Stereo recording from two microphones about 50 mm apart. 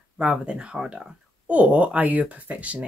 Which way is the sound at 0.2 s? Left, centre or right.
Centre.